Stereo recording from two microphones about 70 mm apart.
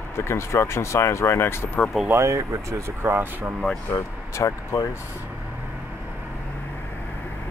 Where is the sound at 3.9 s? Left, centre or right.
Left.